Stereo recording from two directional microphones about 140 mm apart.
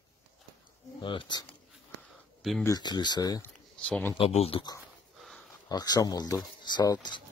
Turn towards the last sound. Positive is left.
turn(degrees=30)  # may be behind; listen again after turning